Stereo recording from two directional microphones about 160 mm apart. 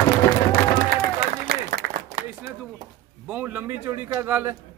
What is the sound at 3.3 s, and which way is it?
Speech, 10° right (ahead or behind).